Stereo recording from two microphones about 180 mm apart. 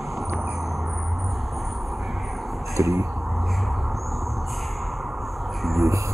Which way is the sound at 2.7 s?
15° right (ahead or behind).